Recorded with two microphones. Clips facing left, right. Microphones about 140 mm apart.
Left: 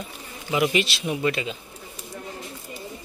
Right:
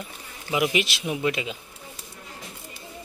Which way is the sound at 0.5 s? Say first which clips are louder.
Left 2 dB; 15° right (ahead or behind).